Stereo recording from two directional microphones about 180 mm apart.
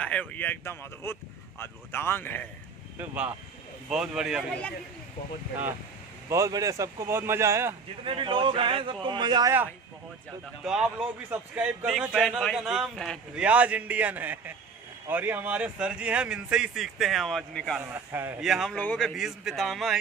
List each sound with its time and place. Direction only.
0.0 s speech: 5° left (ahead or behind)
3.0 s a man's voice: 10° right (ahead or behind)
6.2 s speech: 15° right (ahead or behind)
8.0 s speech: 30° right (ahead or behind)
10.6 s a man's voice: 5° right (ahead or behind)
17.7 s a man's voice: 10° right (ahead or behind)